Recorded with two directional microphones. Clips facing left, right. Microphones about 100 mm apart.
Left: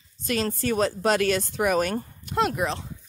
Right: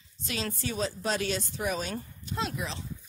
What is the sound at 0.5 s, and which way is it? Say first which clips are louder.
Speech: left 8 dB; 60° left (ahead or behind).